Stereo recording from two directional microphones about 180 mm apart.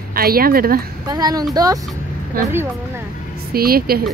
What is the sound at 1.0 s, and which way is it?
Speech, 20° right (ahead or behind).